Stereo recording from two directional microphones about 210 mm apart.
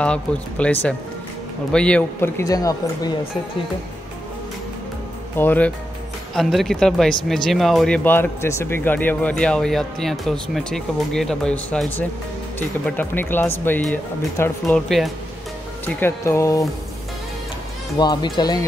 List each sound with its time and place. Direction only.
0.0 s speech: 5° left (ahead or behind)
5.4 s speech: 10° left (ahead or behind)
15.8 s speech: 10° left (ahead or behind)
17.9 s speech: 20° left (ahead or behind)